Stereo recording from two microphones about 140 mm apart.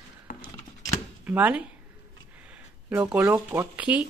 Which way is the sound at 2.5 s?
10° right (ahead or behind).